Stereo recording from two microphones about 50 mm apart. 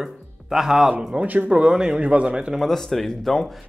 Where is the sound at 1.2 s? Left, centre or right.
Right.